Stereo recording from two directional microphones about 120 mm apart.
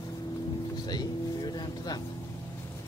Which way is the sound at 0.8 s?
35° left (ahead or behind).